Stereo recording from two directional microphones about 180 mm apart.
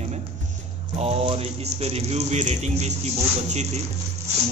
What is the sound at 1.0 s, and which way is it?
Speech, 35° right (ahead or behind).